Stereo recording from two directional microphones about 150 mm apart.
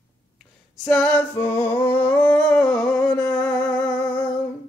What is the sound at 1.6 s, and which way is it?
Humming, 15° left (ahead or behind).